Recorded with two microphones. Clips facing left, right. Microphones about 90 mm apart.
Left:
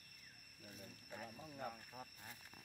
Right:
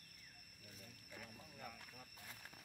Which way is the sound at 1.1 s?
40° left (ahead or behind).